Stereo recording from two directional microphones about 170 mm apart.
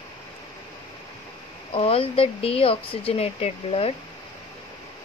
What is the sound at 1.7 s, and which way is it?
Speech, 35° left (ahead or behind).